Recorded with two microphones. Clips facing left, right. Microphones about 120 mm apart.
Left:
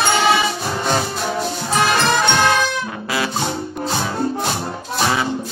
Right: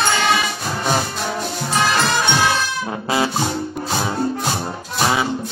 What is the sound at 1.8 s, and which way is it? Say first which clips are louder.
Music: left 2 dB; centre (ahead or behind).